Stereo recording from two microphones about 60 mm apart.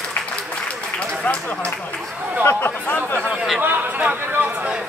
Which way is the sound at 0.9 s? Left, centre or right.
Left.